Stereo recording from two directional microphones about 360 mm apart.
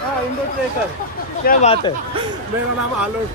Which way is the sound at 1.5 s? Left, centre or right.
Centre.